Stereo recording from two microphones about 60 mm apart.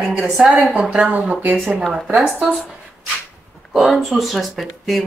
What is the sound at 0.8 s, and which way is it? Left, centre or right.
Speech, centre.